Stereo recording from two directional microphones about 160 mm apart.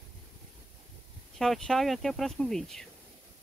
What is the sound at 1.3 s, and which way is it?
Speech, centre (ahead or behind).